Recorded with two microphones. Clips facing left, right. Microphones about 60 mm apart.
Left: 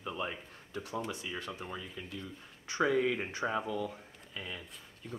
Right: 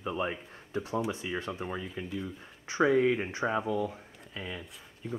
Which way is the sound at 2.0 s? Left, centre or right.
Right.